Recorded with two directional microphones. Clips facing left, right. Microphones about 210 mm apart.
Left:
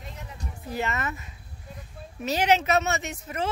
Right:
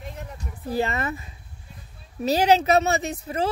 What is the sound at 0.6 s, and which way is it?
Speech, 35° right (ahead or behind).